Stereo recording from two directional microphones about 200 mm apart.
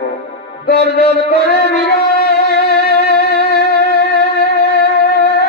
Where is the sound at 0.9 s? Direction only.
50° left (ahead or behind).